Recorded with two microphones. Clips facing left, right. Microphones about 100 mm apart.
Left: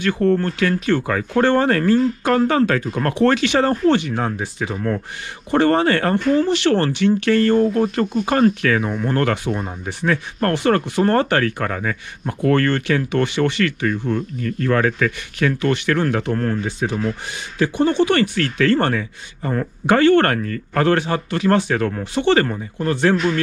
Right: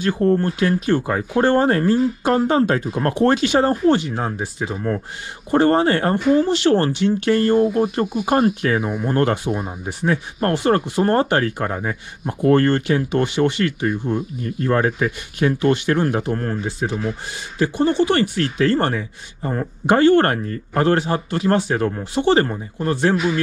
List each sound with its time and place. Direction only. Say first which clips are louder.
0.2 s speech: even; 15° right (ahead or behind)
7.5 s speech: even; 10° right (ahead or behind)